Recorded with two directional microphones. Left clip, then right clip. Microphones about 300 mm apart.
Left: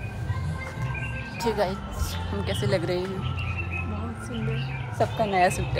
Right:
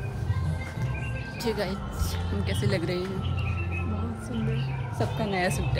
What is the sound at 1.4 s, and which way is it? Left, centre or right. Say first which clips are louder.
A woman's voice: left 4 dB; centre.